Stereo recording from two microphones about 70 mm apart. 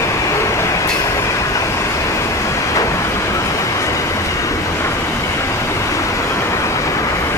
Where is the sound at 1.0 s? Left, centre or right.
Left.